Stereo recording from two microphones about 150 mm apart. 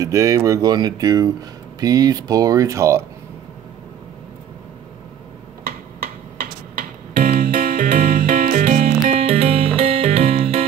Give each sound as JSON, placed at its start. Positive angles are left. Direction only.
{"t": 0.0, "sound": "speech", "side_deg": -20}
{"t": 6.3, "sound": "music", "side_deg": -75}
{"t": 9.2, "sound": "music", "side_deg": -40}